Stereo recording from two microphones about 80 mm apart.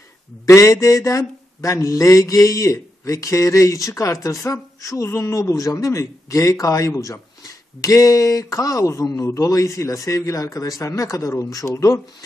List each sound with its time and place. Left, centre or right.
0.5 s speech: left